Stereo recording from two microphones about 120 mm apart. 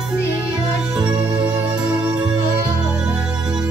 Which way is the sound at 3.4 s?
5° right (ahead or behind).